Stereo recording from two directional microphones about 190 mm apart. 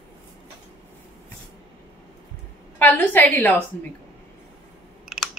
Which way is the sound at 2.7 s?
10° left (ahead or behind).